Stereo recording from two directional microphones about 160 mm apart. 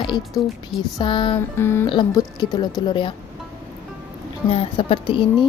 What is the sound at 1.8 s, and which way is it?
Speech, 25° left (ahead or behind).